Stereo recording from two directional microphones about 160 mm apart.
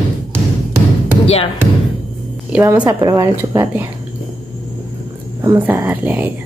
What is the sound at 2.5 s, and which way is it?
Speech, 10° right (ahead or behind).